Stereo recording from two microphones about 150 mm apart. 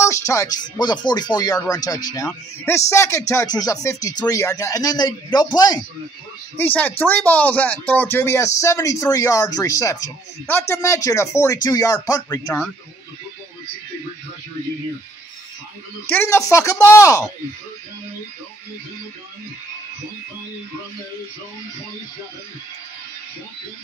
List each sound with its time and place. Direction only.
0.0 s speech: 20° left (ahead or behind)
6.5 s speech: 10° left (ahead or behind)
16.1 s speech: 15° left (ahead or behind)